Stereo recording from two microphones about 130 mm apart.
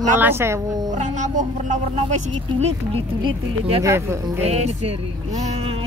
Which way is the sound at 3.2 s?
40° right (ahead or behind).